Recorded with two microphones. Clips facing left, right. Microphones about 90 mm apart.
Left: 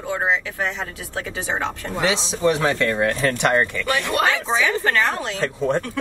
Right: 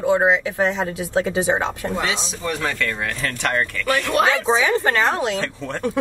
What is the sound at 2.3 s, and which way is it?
Speech, 25° left (ahead or behind).